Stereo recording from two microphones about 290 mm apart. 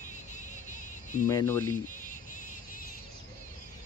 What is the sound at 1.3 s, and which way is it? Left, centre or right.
Speech, centre.